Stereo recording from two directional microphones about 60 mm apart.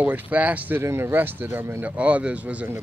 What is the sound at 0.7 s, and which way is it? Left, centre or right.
Speech, right.